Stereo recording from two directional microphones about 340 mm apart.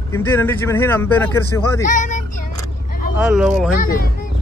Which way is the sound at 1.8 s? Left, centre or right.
Left.